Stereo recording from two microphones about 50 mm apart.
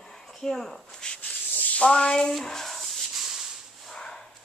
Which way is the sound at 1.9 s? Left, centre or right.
Centre.